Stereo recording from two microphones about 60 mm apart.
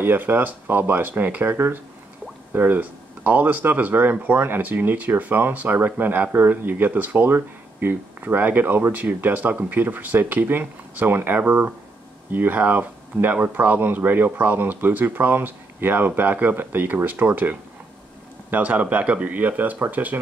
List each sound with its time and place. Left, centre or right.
0.0 s speech: right